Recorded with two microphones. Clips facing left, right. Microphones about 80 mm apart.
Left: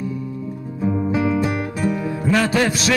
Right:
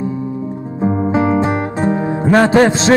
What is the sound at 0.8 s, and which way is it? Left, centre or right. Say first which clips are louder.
Music: right 5 dB; right.